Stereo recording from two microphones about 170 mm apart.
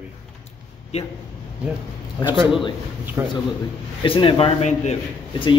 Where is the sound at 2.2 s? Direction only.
30° left (ahead or behind).